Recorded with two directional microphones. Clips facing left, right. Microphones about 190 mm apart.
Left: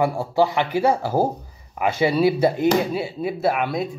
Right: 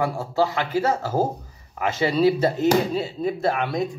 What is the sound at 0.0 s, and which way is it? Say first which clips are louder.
Speech: left 3 dB; 15° left (ahead or behind).